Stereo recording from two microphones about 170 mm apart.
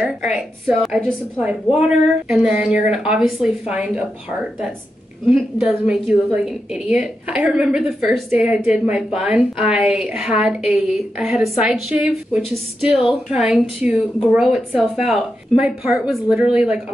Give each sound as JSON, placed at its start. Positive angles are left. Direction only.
{"t": 0.0, "sound": "a woman's voice", "side_deg": -5}
{"t": 5.9, "sound": "a woman's voice", "side_deg": -5}